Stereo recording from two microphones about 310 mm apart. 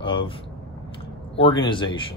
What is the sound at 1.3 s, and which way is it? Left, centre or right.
Speech, centre.